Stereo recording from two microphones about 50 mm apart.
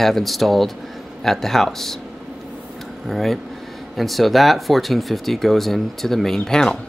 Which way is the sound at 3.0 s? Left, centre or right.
Centre.